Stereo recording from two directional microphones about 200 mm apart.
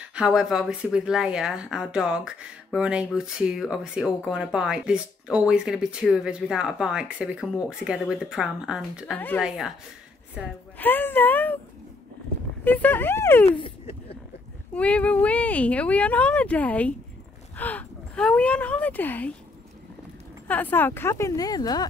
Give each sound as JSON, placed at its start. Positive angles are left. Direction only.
{"t": 0.0, "sound": "speech", "side_deg": -5}
{"t": 10.8, "sound": "a sound", "side_deg": 10}
{"t": 12.6, "sound": "speech", "side_deg": 10}
{"t": 13.5, "sound": "a sound", "side_deg": 25}
{"t": 14.7, "sound": "speech", "side_deg": 5}
{"t": 20.4, "sound": "speech", "side_deg": 10}